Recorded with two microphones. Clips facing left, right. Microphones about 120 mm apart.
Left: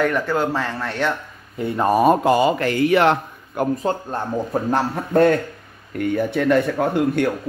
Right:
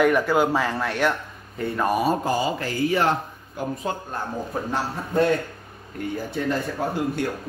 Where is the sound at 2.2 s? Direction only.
70° left (ahead or behind).